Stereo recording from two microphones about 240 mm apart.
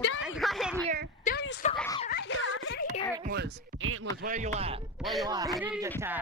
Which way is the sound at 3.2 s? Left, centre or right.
Right.